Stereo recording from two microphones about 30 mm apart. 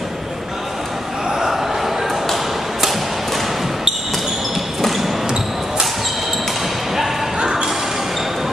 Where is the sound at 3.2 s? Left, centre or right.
Centre.